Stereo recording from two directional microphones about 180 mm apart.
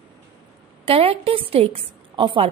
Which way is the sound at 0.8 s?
30° right (ahead or behind).